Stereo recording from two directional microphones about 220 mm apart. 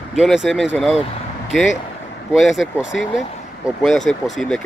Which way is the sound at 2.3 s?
Centre (ahead or behind).